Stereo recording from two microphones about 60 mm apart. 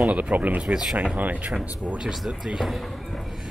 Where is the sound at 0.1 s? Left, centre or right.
Right.